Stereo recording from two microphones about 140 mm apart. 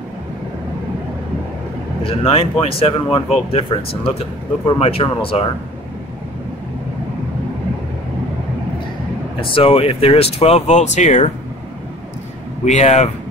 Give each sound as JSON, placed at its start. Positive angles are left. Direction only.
{"t": 2.0, "sound": "speech", "side_deg": 45}
{"t": 9.4, "sound": "speech", "side_deg": 40}
{"t": 12.6, "sound": "speech", "side_deg": 55}